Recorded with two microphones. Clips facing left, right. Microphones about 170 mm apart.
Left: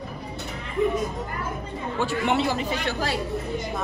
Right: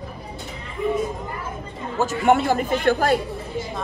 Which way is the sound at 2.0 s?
45° right (ahead or behind).